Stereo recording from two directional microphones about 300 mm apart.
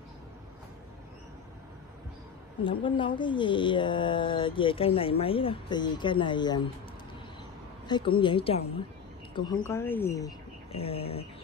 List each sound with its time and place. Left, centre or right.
2.6 s speech: centre
7.9 s speech: centre